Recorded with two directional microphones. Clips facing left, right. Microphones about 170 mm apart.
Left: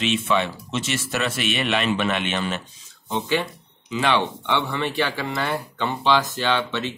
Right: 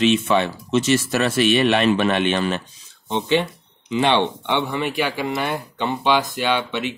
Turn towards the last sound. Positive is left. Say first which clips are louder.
# right 2 dB
turn(degrees=-10)  # may be behind; listen again after turning